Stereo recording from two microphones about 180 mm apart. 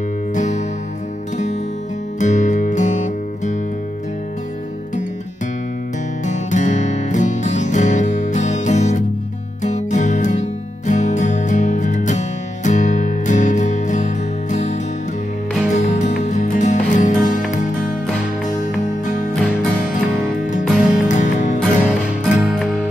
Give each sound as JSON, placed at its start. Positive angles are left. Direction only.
{"t": 0.3, "sound": "music", "side_deg": 40}
{"t": 2.1, "sound": "music", "side_deg": 40}
{"t": 6.2, "sound": "music", "side_deg": 40}
{"t": 15.7, "sound": "music", "side_deg": 40}
{"t": 19.7, "sound": "music", "side_deg": 0}
{"t": 20.5, "sound": "music", "side_deg": 45}
{"t": 22.2, "sound": "music", "side_deg": 5}